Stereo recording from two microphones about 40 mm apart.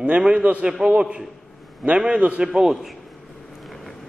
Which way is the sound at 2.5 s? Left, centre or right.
Centre.